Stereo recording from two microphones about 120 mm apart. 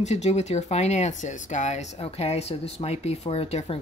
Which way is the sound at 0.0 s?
65° left (ahead or behind).